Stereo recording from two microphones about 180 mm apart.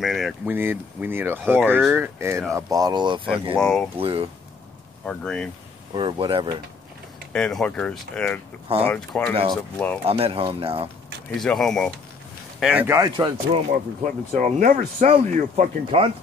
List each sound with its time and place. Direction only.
0.0 s speech: centre (ahead or behind)
0.5 s speech: 10° right (ahead or behind)
3.5 s speech: 5° left (ahead or behind)
3.9 s speech: 30° right (ahead or behind)
5.0 s speech: 5° left (ahead or behind)
5.9 s speech: 25° right (ahead or behind)
7.3 s speech: 5° left (ahead or behind)
10.0 s speech: 35° right (ahead or behind)
11.3 s speech: centre (ahead or behind)
12.8 s speech: 15° right (ahead or behind)
13.1 s speech: 30° right (ahead or behind)
14.3 s speech: 45° right (ahead or behind)